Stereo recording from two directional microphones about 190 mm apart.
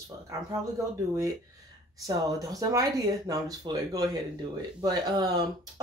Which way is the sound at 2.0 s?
20° right (ahead or behind).